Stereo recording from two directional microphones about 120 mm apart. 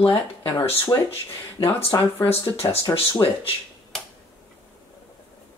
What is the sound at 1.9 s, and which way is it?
Speech, 30° left (ahead or behind).